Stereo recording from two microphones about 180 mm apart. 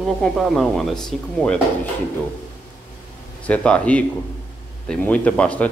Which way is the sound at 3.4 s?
5° left (ahead or behind).